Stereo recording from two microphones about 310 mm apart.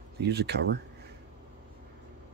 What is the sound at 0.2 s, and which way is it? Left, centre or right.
Speech, right.